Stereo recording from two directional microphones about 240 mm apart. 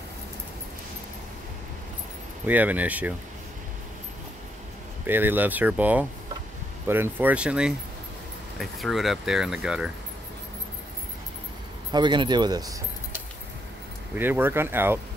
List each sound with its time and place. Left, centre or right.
2.4 s speech: centre
5.0 s speech: centre
11.9 s speech: centre